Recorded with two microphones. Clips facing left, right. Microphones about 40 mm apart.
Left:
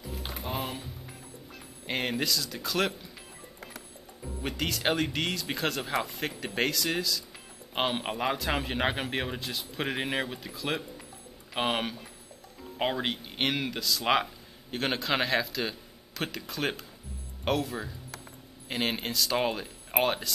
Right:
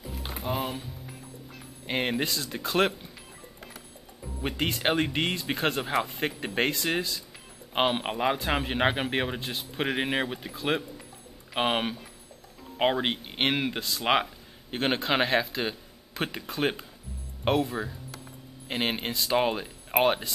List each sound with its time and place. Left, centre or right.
0.0 s music: centre
1.9 s speech: centre
2.2 s speech: right
4.4 s speech: right
7.7 s speech: centre
19.3 s speech: centre